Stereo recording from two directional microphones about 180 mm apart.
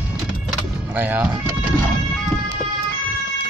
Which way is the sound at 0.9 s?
10° right (ahead or behind).